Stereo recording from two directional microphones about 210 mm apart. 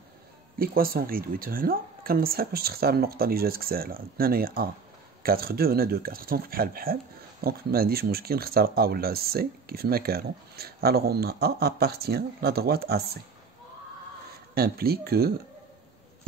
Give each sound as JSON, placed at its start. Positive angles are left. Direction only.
{"t": 0.6, "sound": "speech", "side_deg": -45}
{"t": 14.5, "sound": "speech", "side_deg": -45}